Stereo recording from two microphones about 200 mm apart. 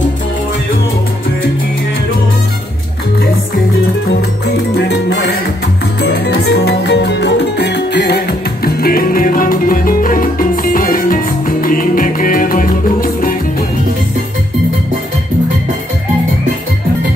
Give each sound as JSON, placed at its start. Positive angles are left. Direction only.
{"t": 4.7, "sound": "music", "side_deg": 55}